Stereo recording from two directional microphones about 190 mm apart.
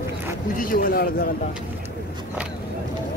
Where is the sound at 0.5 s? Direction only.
50° left (ahead or behind).